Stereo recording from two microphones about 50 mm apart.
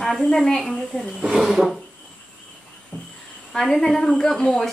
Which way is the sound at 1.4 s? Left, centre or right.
Centre.